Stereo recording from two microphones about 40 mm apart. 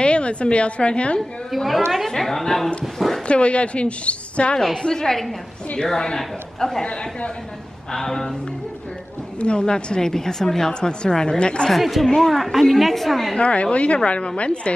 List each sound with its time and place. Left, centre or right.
0.0 s a woman's voice: left
2.0 s a man's voice: centre
3.3 s a woman's voice: left
4.8 s a man's voice: centre
6.8 s a woman's voice: left
7.9 s a man's voice: centre
9.4 s a woman's voice: left
11.7 s a woman's voice: centre
13.4 s a woman's voice: left